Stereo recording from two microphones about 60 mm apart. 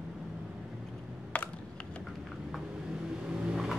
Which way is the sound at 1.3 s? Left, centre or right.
Left.